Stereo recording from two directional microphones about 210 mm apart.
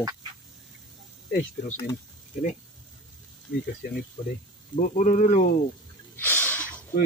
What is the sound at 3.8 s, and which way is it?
Speech, 45° left (ahead or behind).